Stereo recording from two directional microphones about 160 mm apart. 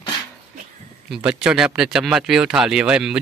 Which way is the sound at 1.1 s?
5° right (ahead or behind).